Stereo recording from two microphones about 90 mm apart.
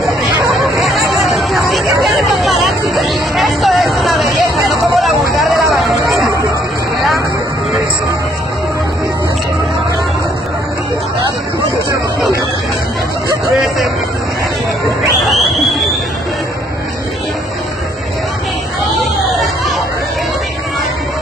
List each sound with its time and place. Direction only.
0.7 s chatter: centre (ahead or behind)